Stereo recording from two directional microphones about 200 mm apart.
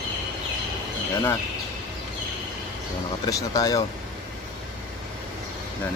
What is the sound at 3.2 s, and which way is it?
Speech, 15° left (ahead or behind).